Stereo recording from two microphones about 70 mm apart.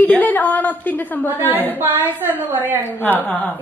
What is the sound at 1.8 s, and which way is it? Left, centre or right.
Speech, right.